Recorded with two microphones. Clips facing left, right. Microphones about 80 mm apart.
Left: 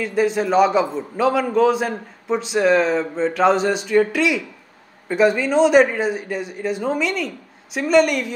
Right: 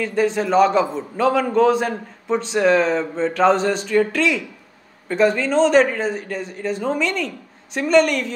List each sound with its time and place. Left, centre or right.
0.0 s a man's voice: centre